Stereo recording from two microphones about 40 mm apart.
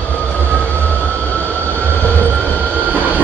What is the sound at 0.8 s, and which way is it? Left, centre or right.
Vehicle, left.